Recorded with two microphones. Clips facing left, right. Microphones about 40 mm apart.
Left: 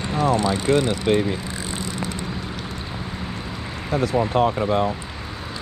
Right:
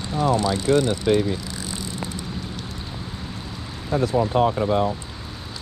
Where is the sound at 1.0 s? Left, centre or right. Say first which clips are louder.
Even; left.